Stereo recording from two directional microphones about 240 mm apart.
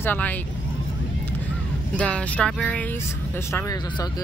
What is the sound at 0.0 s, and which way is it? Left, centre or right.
Speech, centre.